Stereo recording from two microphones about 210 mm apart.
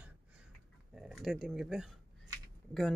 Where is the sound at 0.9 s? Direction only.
Centre (ahead or behind).